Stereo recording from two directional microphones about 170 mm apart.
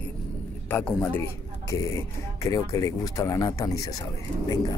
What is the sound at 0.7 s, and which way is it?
Speech, 10° left (ahead or behind).